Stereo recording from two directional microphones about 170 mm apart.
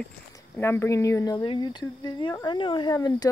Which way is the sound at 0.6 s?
15° left (ahead or behind).